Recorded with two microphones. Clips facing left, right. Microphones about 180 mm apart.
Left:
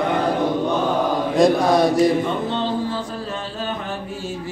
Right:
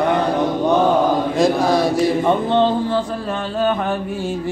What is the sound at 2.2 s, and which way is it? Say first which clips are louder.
Music: right 7 dB; 60° right (ahead or behind).